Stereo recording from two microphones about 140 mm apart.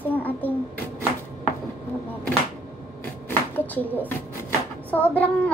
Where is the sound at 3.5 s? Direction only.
10° left (ahead or behind).